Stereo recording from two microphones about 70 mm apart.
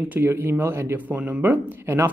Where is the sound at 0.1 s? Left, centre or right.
Right.